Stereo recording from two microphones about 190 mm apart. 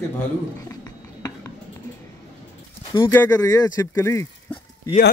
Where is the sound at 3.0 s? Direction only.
15° left (ahead or behind).